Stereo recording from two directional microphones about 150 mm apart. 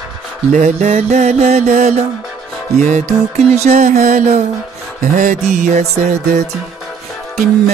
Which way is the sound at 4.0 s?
60° right (ahead or behind).